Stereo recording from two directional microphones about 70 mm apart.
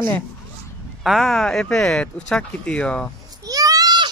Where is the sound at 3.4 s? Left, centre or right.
Right.